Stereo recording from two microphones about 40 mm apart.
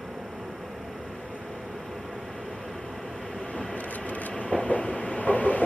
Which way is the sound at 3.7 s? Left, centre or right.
Left.